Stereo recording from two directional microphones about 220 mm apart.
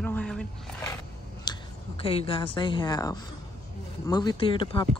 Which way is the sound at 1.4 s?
25° left (ahead or behind).